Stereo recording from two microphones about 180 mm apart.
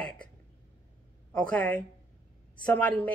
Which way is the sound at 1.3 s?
5° left (ahead or behind).